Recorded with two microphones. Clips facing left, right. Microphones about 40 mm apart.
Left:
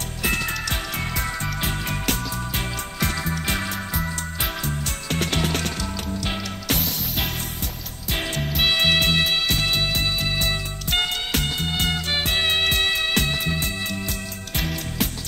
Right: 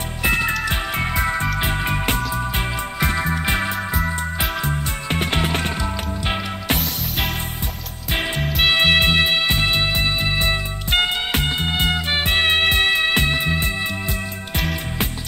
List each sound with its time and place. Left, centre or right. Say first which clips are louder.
0.2 s music: right 5 dB; right
3.9 s music: right 5 dB; centre
4.6 s music: right 4 dB; right
8.1 s music: right 3 dB; right